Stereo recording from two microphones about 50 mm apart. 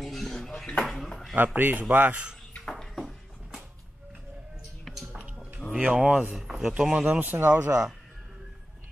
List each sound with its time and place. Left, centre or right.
0.0 s dishes: centre
0.8 s a sound: centre
1.3 s speech: right
2.8 s a sound: centre
4.8 s music: centre
5.8 s speech: centre
7.2 s speech: right
7.5 s speech: right